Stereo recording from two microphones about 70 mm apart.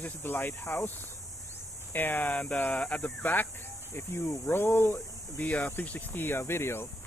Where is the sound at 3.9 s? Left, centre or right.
Left.